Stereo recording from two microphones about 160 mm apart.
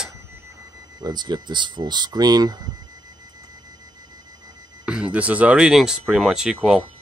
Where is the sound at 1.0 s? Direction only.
25° right (ahead or behind).